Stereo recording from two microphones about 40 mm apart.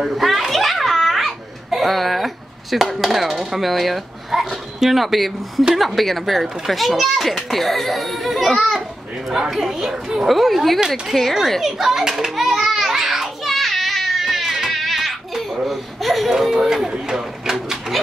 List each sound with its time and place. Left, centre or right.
0.0 s a child's voice: centre
9.3 s a woman's voice: centre
10.2 s a child's voice: centre
11.6 s children playing: centre
15.6 s a sound: centre
16.3 s a woman's voice: centre
16.9 s a sound: centre